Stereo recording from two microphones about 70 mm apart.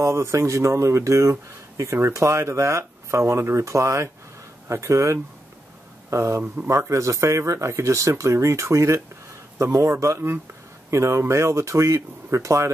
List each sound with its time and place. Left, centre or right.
0.0 s speech: right